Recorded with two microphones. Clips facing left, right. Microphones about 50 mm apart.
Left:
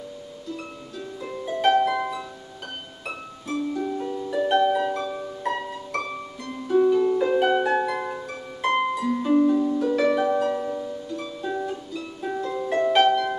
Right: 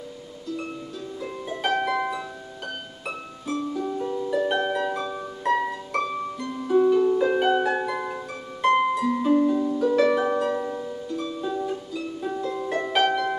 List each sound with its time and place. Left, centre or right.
1.2 s harp: centre
3.4 s music: centre
4.1 s harp: centre
4.8 s music: centre
6.7 s music: centre
7.1 s harp: centre
10.6 s music: centre
11.1 s music: centre
12.2 s music: centre
12.8 s harp: centre